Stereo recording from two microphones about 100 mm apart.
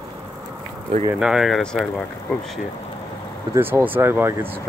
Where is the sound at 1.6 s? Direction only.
5° left (ahead or behind).